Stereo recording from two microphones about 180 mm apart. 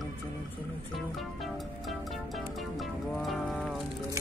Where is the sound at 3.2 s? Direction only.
Centre (ahead or behind).